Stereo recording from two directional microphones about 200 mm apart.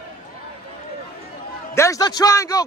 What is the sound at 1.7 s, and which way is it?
Speech, 15° left (ahead or behind).